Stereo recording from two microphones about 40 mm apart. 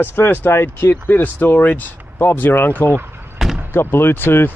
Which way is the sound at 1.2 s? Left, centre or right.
Left.